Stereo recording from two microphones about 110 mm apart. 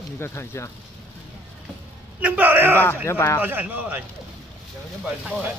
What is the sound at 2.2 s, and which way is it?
Speech, 15° right (ahead or behind).